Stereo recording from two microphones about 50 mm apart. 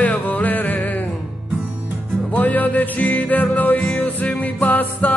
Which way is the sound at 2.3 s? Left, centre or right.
Left.